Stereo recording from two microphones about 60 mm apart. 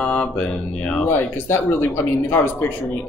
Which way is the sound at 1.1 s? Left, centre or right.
Left.